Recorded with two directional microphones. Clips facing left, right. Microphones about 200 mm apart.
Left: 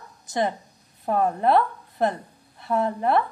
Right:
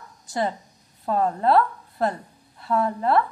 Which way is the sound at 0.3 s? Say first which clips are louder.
Left 1 dB; 20° left (ahead or behind).